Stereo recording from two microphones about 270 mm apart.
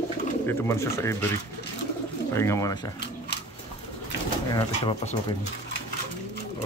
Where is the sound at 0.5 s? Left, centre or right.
Centre.